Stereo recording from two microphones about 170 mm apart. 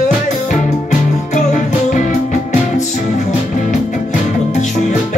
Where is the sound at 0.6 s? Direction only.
45° left (ahead or behind).